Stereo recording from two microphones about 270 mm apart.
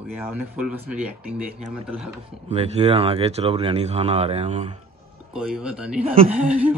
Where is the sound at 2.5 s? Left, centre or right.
Right.